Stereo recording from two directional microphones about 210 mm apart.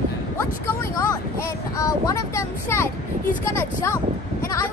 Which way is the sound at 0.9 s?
15° left (ahead or behind).